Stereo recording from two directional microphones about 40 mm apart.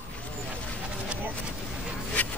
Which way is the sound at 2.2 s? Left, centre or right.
Left.